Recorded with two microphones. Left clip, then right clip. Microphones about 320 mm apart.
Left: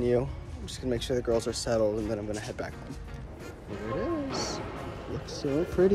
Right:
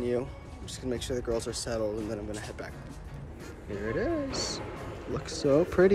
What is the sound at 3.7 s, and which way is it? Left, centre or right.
Speech, centre.